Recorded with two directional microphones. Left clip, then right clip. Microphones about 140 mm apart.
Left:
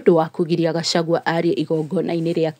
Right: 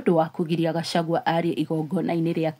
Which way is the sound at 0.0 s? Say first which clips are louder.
Left 6 dB; 30° left (ahead or behind).